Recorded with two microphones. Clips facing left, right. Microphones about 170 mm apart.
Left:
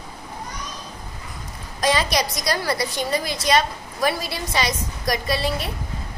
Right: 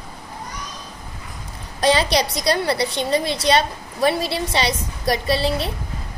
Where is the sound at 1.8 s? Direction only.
30° right (ahead or behind).